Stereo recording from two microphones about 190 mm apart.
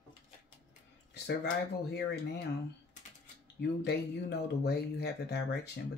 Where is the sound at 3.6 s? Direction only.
60° left (ahead or behind).